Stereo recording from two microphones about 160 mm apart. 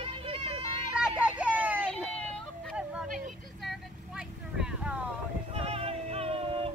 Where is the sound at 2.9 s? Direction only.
5° right (ahead or behind).